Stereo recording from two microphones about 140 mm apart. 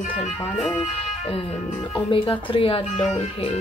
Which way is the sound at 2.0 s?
35° left (ahead or behind).